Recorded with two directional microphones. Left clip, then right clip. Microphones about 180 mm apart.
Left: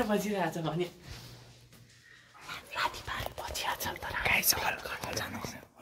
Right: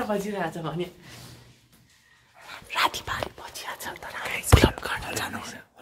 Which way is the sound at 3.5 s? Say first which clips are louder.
Left 1 dB; 20° left (ahead or behind).